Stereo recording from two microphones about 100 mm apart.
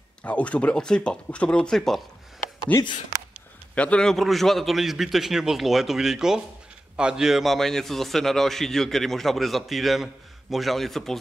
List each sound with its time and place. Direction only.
0.2 s speech: 15° left (ahead or behind)
2.7 s a man's voice: 20° left (ahead or behind); by 11.1 s 5° left (ahead or behind)